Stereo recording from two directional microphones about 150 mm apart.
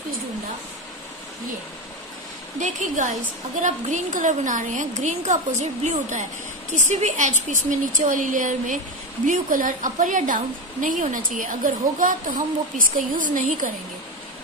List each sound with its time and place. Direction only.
2.6 s a woman's voice: 55° right (ahead or behind)